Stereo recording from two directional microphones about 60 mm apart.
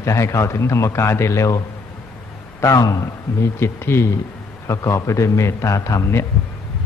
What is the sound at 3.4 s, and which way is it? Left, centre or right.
Speech, left.